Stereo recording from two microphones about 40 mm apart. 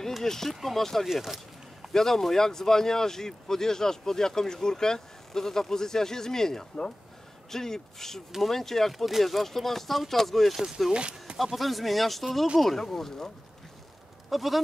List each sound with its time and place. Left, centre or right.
0.2 s speech: centre
0.6 s speech: centre
1.0 s a sound: centre
1.9 s speech: centre
10.9 s speech: right
11.3 s speech: centre
14.3 s speech: centre